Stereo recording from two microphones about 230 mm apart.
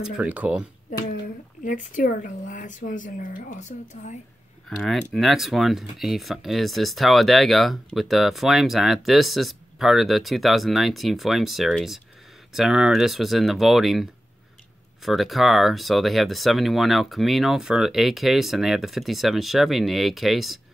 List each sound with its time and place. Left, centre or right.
0.2 s speech: centre
1.6 s a woman's voice: left
4.6 s speech: centre
15.0 s speech: centre